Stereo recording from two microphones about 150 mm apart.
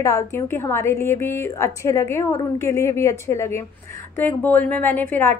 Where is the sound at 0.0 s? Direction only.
20° left (ahead or behind).